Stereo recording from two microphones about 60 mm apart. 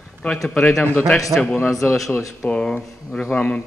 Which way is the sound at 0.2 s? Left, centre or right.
Centre.